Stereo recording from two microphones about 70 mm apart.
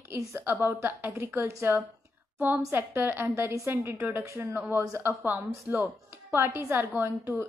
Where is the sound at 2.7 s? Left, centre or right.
Right.